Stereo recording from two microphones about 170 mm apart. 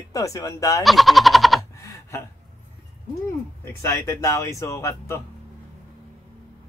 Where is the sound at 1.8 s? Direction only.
20° left (ahead or behind).